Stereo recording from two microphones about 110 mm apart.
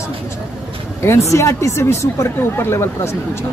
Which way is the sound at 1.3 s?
25° left (ahead or behind).